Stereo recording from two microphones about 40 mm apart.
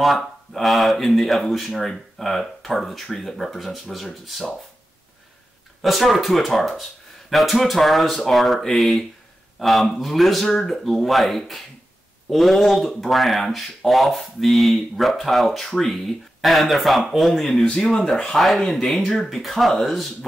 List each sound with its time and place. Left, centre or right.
0.0 s speech: centre
5.8 s speech: centre
17.6 s speech: left
18.1 s speech: centre